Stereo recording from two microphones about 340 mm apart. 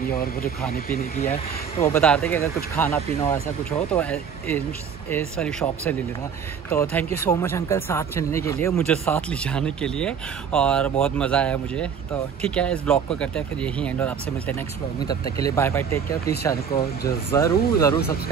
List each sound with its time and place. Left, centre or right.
0.9 s speech: centre
1.9 s speech: centre